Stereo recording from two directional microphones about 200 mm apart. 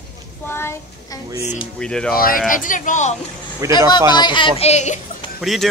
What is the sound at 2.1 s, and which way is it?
A woman's voice, 45° left (ahead or behind).